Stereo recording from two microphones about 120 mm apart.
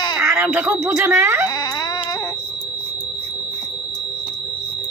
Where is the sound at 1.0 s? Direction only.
20° right (ahead or behind).